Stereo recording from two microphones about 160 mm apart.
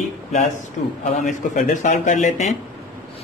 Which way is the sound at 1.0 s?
50° left (ahead or behind).